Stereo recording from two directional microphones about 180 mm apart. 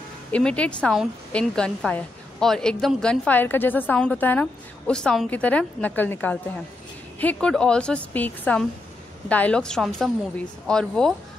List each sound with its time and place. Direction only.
0.3 s a woman's voice: 5° left (ahead or behind)